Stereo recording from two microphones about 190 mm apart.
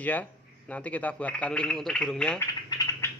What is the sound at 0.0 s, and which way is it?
Speech, 10° left (ahead or behind).